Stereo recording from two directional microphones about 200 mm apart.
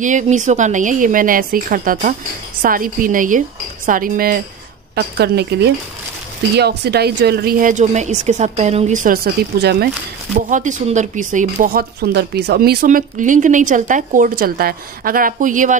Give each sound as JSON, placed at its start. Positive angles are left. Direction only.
{"t": 0.0, "sound": "a woman's voice", "side_deg": -40}
{"t": 10.5, "sound": "speech", "side_deg": -40}